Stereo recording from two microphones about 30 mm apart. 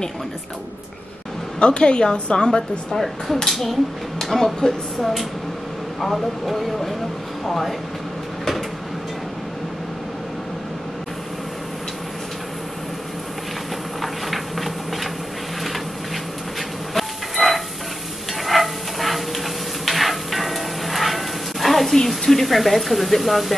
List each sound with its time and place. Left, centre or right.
1.6 s a woman's voice: left
3.4 s speech: centre
4.6 s a woman's voice: centre
5.9 s speech: centre
14.0 s a sound: centre
16.9 s a sound: centre
18.4 s dog: centre
21.9 s speech: centre